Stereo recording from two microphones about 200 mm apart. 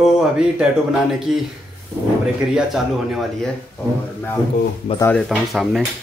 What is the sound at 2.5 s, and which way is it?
Speech, centre (ahead or behind).